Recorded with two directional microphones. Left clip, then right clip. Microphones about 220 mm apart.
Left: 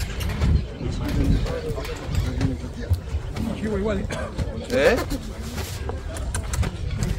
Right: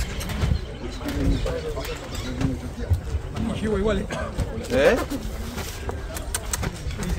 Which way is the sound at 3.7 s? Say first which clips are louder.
Right 2 dB; 45° right (ahead or behind).